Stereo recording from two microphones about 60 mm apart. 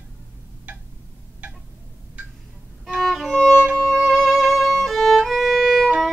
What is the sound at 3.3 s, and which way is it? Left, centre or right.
Violin, centre.